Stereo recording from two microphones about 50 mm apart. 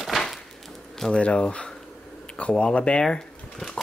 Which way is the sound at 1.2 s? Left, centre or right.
Left.